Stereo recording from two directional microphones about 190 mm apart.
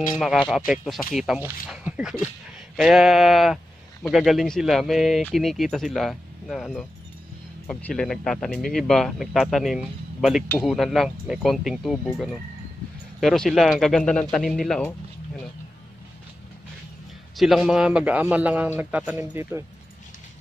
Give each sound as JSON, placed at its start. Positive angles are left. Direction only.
{"t": 0.1, "sound": "speech", "side_deg": 0}
{"t": 17.4, "sound": "a man's voice", "side_deg": 0}